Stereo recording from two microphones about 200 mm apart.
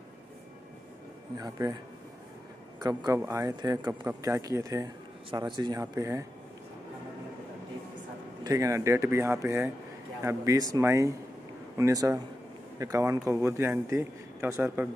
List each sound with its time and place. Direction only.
1.4 s speech: 20° right (ahead or behind)
2.8 s speech: 20° right (ahead or behind)
8.5 s speech: 15° right (ahead or behind)